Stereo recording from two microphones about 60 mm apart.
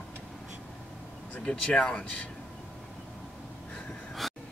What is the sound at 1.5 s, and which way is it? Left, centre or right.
Speech, centre.